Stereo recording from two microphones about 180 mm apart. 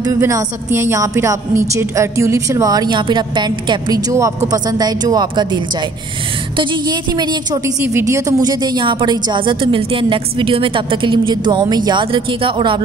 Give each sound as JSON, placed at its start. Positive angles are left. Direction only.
{"t": 0.0, "sound": "a woman's voice", "side_deg": -15}